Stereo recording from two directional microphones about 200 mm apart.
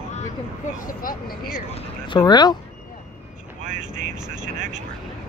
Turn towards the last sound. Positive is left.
turn(degrees=-40)  # may be behind; listen again after turning